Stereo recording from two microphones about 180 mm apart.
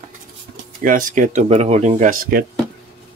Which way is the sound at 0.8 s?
50° right (ahead or behind).